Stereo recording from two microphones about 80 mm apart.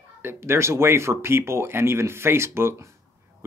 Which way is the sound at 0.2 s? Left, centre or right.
Right.